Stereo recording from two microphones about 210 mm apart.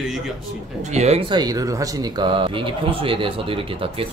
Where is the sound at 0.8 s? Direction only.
30° right (ahead or behind).